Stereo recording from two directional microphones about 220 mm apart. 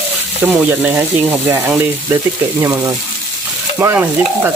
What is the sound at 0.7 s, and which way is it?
Frying, 5° right (ahead or behind).